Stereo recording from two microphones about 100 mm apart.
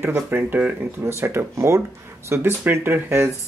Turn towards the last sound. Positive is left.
turn(degrees=-20)  # may be behind; listen again after turning